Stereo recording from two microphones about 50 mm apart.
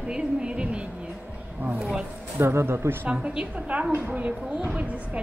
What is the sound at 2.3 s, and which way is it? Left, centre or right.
Speech, right.